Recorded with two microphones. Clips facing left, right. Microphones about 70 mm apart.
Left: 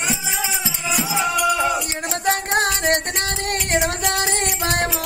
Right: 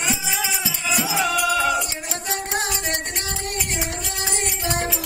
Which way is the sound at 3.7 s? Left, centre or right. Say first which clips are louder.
Left 8 dB; left.